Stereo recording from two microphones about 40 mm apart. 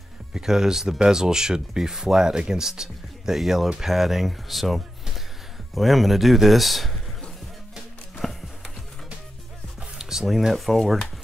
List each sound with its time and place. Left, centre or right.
0.3 s speech: centre
8.2 s music: centre
9.8 s music: centre